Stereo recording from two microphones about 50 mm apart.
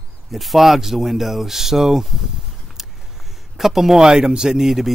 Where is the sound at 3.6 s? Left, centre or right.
Centre.